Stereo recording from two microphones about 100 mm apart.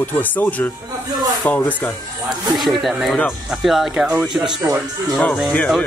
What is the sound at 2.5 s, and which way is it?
Speech, centre (ahead or behind).